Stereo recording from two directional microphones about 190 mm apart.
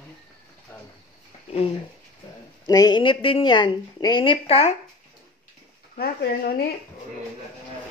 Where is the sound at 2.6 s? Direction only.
20° left (ahead or behind).